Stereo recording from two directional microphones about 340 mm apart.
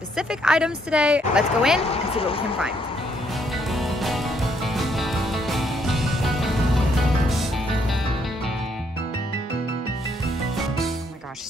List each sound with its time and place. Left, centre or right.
0.3 s speech: centre
1.8 s speech: centre
3.7 s music: centre